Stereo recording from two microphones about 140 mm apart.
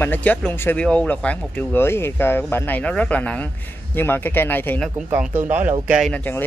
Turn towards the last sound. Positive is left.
turn(degrees=10)  # may be behind; listen again after turning